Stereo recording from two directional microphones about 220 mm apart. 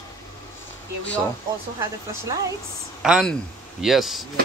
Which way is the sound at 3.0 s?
Centre (ahead or behind).